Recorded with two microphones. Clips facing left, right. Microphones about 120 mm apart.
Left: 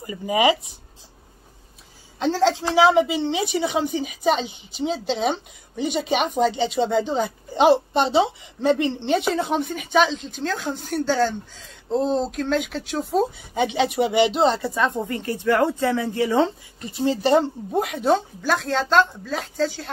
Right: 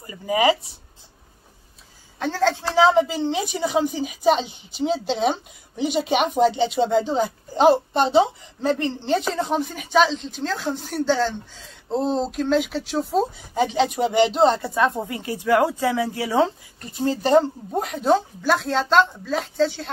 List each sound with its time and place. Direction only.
0.0 s speech: 15° left (ahead or behind)
2.1 s speech: 20° left (ahead or behind); by 19.9 s centre (ahead or behind)